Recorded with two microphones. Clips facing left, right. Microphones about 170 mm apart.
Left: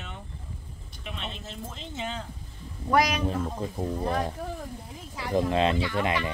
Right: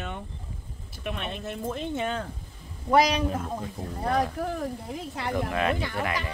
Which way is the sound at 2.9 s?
30° right (ahead or behind).